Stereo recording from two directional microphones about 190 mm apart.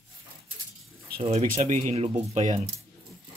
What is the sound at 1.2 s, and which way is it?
Speech, 35° right (ahead or behind).